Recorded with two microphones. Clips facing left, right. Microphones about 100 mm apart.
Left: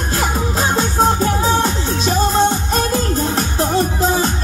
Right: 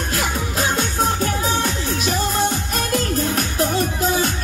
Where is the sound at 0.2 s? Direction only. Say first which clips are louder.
Left 5 dB; 30° left (ahead or behind).